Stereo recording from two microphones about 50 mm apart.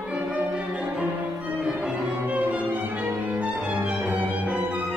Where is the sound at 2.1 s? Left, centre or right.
Right.